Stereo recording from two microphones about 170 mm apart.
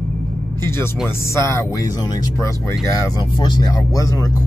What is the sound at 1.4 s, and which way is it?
Speech, 15° left (ahead or behind).